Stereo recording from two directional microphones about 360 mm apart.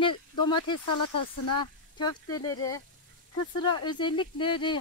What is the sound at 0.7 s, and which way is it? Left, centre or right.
Speech, left.